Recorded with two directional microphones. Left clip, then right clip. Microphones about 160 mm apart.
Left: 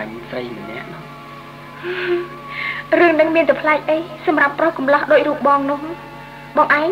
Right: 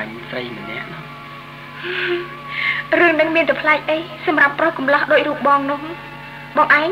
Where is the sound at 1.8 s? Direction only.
40° left (ahead or behind).